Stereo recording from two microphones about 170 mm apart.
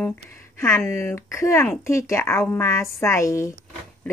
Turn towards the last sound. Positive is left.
turn(degrees=15)  # may be behind; listen again after turning